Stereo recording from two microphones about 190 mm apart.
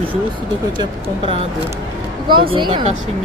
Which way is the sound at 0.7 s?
30° right (ahead or behind).